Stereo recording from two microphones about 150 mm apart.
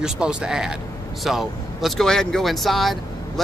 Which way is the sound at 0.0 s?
5° right (ahead or behind).